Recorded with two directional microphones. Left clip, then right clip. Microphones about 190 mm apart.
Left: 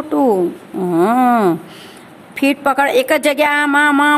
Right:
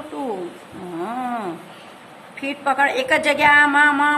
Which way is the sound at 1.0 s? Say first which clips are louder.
Left 13 dB; 50° left (ahead or behind).